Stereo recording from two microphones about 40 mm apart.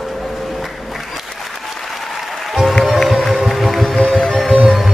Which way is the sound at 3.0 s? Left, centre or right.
Centre.